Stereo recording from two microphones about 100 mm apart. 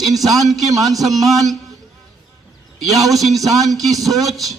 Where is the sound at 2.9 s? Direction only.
Centre (ahead or behind).